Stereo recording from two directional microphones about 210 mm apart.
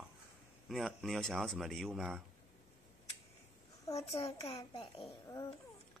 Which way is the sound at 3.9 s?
30° left (ahead or behind).